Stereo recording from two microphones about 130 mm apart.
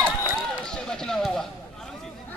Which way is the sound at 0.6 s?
5° left (ahead or behind).